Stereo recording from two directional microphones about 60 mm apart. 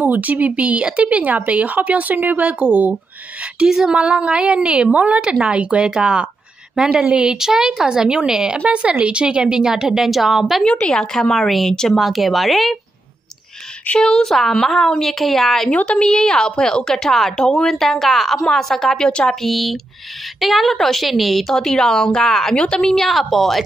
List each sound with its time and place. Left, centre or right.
0.0 s speech: right
3.5 s a woman's voice: centre
10.9 s a woman's voice: centre
13.9 s a woman's voice: centre
15.7 s a woman's voice: left
16.0 s a woman's voice: centre
19.4 s a woman's voice: centre